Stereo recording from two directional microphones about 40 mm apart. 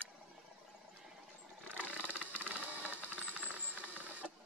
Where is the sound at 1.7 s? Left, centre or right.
Right.